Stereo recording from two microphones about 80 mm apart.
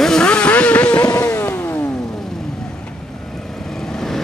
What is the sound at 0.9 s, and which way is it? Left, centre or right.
Vehicle, left.